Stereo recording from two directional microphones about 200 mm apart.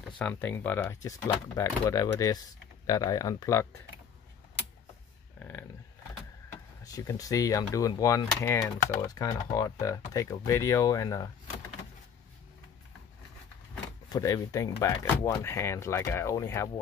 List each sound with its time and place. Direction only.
0.2 s speech: 10° left (ahead or behind)
5.4 s a sound: 10° left (ahead or behind)
6.8 s speech: 15° left (ahead or behind)
8.3 s speech: centre (ahead or behind)
8.5 s speech: 15° left (ahead or behind)
14.0 s speech: 20° left (ahead or behind)